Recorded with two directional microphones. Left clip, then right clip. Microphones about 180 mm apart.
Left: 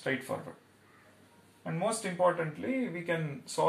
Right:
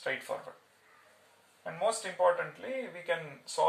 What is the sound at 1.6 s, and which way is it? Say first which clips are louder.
Speech: right 1 dB; 15° right (ahead or behind).